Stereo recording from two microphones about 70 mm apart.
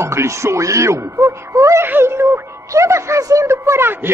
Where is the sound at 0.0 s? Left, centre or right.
Right.